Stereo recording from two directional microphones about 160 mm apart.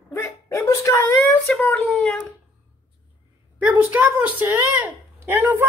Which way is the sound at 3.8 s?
10° right (ahead or behind).